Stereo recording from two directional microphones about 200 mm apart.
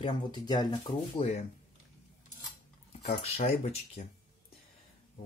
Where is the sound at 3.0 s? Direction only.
30° left (ahead or behind).